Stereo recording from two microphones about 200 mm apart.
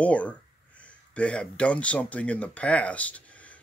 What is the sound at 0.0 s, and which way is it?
Speech, 5° left (ahead or behind).